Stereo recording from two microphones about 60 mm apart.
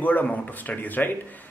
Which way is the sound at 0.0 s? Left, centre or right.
Left.